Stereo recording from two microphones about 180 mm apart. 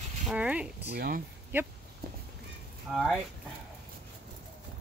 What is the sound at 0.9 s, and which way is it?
Speech, 55° right (ahead or behind).